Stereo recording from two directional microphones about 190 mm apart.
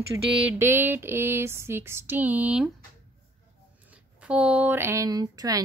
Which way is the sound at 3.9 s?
5° right (ahead or behind).